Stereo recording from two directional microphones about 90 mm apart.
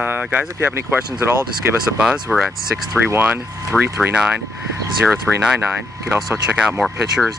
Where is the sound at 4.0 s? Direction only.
10° right (ahead or behind).